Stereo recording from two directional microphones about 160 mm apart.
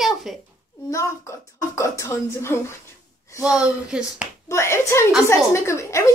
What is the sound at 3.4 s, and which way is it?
Speech, 5° right (ahead or behind).